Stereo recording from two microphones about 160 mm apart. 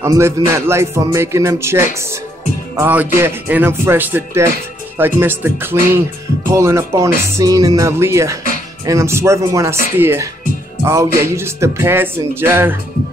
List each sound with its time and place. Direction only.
0.0 s a man's voice: 20° right (ahead or behind)
6.5 s music: 15° right (ahead or behind)
8.8 s a man's voice: 20° right (ahead or behind)